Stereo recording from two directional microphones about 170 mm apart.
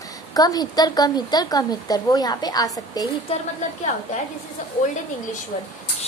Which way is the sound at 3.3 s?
35° left (ahead or behind).